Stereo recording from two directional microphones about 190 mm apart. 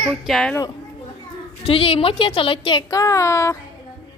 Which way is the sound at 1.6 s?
30° left (ahead or behind).